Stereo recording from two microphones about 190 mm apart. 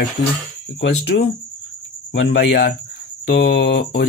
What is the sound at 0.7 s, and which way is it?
Speech, 70° left (ahead or behind).